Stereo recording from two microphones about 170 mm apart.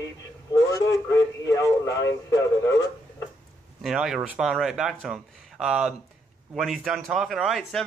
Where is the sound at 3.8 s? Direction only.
Centre (ahead or behind).